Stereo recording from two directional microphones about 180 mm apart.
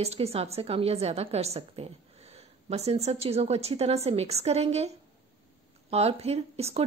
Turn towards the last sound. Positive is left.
turn(degrees=-35)  # may be behind; listen again after turning